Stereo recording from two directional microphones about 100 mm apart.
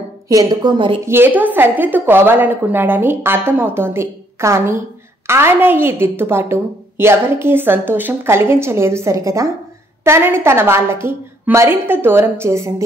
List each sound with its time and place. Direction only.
0.3 s a woman's voice: 40° right (ahead or behind)
1.0 s a woman's voice: 20° right (ahead or behind)